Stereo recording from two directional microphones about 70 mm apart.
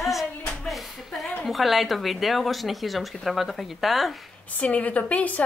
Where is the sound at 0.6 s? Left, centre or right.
Centre.